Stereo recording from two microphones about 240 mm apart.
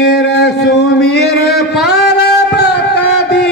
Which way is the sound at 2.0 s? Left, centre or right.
Left.